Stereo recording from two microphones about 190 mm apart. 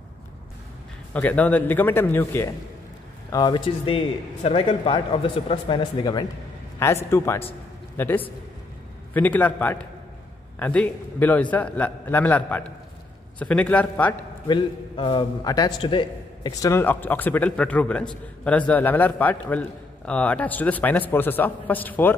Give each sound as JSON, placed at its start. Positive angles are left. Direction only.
{"t": 1.1, "sound": "a man's voice", "side_deg": 10}
{"t": 14.5, "sound": "a man's voice", "side_deg": 25}